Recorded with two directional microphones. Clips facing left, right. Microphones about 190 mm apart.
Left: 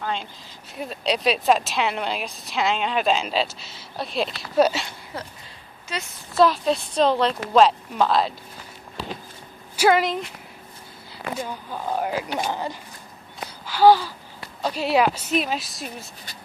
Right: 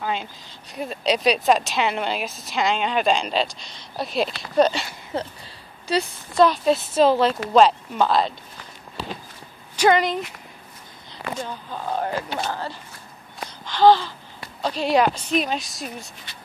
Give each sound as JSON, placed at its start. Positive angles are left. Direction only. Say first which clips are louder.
{"t": 0.7, "sound": "a woman's voice", "louder": "right 2 dB", "side_deg": 0}
{"t": 5.1, "sound": "a woman's voice", "louder": "right 8 dB", "side_deg": -25}
{"t": 6.3, "sound": "a woman's voice", "louder": "right 1 dB", "side_deg": 0}
{"t": 9.8, "sound": "a woman's voice", "louder": "right 1 dB", "side_deg": 5}
{"t": 11.3, "sound": "a woman's voice", "louder": "left 1 dB", "side_deg": 10}